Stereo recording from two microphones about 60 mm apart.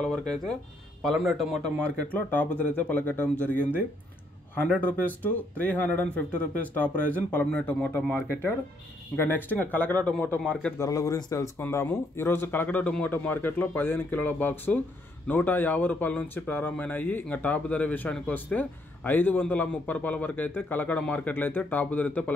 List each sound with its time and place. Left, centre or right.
0.0 s a man's voice: centre
2.0 s speech: left
8.3 s speech: left
10.8 s a man's voice: left
11.3 s speech: left